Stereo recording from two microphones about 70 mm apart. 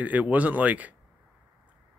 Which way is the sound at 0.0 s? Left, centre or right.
Right.